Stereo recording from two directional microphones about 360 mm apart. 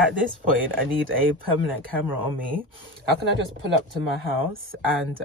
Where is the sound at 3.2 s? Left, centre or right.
Right.